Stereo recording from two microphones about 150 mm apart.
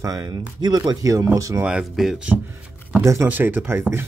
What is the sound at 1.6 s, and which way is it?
Speech, 5° right (ahead or behind).